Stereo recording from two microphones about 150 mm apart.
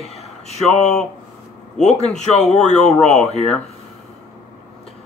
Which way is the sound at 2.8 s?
5° left (ahead or behind).